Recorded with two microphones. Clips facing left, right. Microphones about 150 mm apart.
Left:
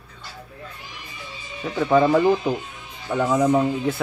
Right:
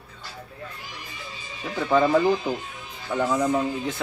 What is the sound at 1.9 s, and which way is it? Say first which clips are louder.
Speech: left 3 dB; 20° left (ahead or behind).